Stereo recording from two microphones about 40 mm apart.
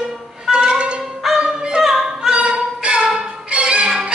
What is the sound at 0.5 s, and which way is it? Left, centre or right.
Music, right.